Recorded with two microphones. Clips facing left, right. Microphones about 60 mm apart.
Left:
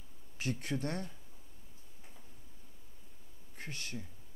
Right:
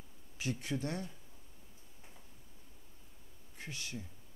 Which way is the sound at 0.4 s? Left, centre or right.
Left.